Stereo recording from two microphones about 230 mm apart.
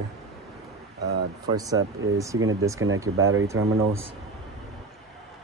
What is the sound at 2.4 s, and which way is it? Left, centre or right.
Speech, right.